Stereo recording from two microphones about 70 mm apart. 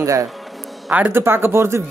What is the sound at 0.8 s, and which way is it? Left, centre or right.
Speech, right.